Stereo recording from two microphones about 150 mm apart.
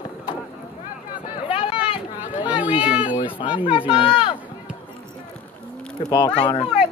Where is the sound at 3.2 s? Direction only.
35° left (ahead or behind).